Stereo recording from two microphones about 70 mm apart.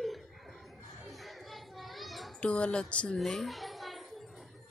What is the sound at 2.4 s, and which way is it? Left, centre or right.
Speech, centre.